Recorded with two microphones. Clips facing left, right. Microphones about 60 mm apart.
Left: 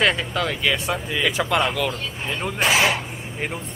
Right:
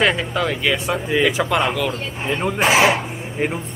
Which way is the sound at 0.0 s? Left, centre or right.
Centre.